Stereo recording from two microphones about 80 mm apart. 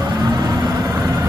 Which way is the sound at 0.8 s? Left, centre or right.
Right.